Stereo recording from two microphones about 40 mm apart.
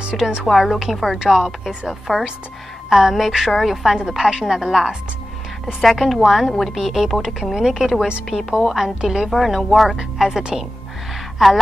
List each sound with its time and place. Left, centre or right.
0.0 s a woman's voice: right
0.5 s a woman's voice: centre
1.9 s a woman's voice: centre
9.3 s a woman's voice: centre